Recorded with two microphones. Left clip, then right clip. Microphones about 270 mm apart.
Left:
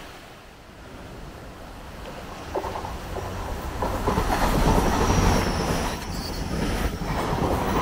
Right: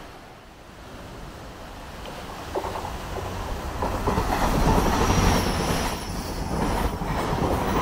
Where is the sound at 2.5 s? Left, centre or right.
Left.